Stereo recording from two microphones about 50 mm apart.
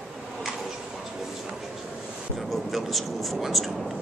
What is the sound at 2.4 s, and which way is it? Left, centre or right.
Speech, centre.